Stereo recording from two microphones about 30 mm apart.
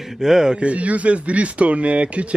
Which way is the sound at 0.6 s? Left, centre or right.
Right.